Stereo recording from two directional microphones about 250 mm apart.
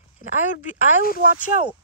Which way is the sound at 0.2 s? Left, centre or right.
Left.